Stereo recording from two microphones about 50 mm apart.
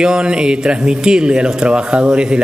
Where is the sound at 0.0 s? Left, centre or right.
Centre.